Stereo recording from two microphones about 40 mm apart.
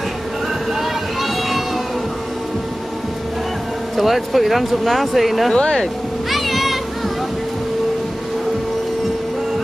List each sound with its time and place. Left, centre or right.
0.7 s vehicle: centre
3.9 s speech: centre
5.5 s speech: left
6.3 s music: centre